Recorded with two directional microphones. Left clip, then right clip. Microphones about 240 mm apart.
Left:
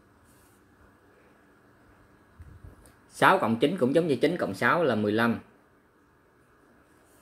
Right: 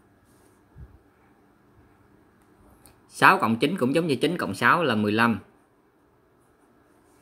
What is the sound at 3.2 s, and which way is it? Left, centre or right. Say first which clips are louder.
Speech: right 3 dB; right.